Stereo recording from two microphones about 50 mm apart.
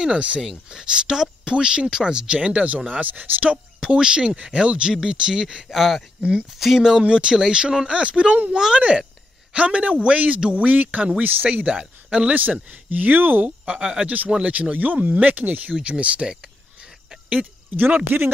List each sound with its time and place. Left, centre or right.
0.0 s speech: right
3.8 s speech: centre
6.8 s speech: centre
12.9 s speech: right
13.7 s speech: centre
14.0 s speech: right
17.7 s speech: right